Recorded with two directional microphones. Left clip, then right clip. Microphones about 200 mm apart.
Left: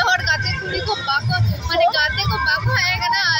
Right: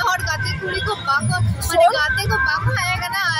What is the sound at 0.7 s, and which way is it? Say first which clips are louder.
Music: right 1 dB; 10° right (ahead or behind).